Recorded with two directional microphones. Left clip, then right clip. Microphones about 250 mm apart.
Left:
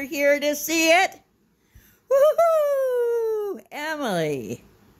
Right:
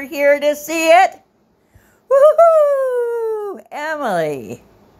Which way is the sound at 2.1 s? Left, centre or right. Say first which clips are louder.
Right 8 dB; centre.